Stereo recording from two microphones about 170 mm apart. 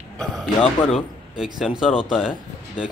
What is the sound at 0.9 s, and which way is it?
A man's voice, centre (ahead or behind).